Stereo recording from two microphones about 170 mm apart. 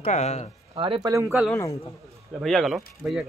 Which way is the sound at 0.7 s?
30° right (ahead or behind).